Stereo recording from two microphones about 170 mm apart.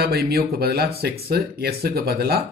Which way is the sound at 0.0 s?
70° right (ahead or behind).